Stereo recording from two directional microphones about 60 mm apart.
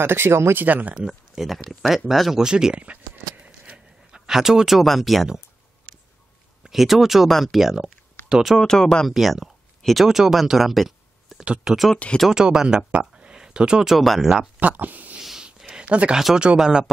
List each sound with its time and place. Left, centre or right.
0.0 s speech: right
0.7 s speech: right
1.0 s speech: centre
2.4 s a sound: centre
6.6 s speech: centre
8.5 s speech: centre
9.1 s speech: centre
11.4 s speech: centre
11.7 s speech: centre
14.6 s speech: right
15.1 s a sound: centre
15.8 s speech: right